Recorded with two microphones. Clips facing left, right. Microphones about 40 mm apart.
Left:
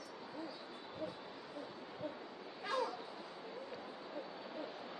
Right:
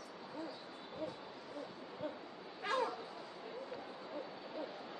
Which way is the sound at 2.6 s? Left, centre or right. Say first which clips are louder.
Right 2 dB; right.